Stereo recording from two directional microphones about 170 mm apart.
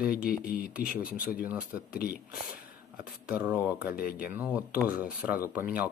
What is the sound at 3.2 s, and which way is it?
Speech, 10° right (ahead or behind).